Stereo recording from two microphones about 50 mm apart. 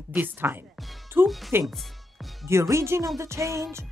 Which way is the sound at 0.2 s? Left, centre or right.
Right.